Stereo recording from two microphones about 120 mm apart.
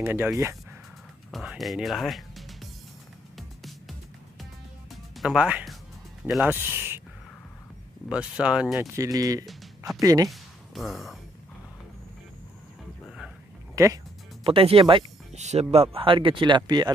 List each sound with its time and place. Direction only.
0.0 s speech: 15° right (ahead or behind)
1.3 s music: centre (ahead or behind)
5.1 s speech: 5° right (ahead or behind)
6.5 s speech: 20° right (ahead or behind)
8.1 s speech: 10° right (ahead or behind)
8.9 s speech: 30° right (ahead or behind)
10.3 s a sound: centre (ahead or behind)
13.8 s speech: 25° right (ahead or behind)
14.4 s speech: 50° right (ahead or behind)
15.3 s speech: 70° right (ahead or behind); by 16.9 s 35° right (ahead or behind)